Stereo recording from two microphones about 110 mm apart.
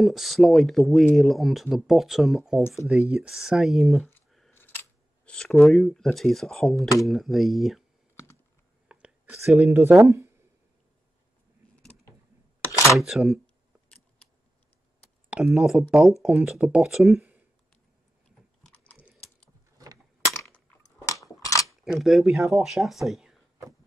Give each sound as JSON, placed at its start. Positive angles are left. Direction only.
{"t": 0.0, "sound": "speech", "side_deg": 0}
{"t": 4.5, "sound": "scissors", "side_deg": 20}
{"t": 5.3, "sound": "speech", "side_deg": 5}
{"t": 8.8, "sound": "whispering", "side_deg": -10}
{"t": 9.7, "sound": "speech", "side_deg": -20}
{"t": 12.8, "sound": "speech", "side_deg": -5}
{"t": 15.2, "sound": "speech", "side_deg": -10}
{"t": 18.6, "sound": "typing", "side_deg": 10}
{"t": 21.1, "sound": "scissors", "side_deg": 30}
{"t": 21.8, "sound": "speech", "side_deg": 0}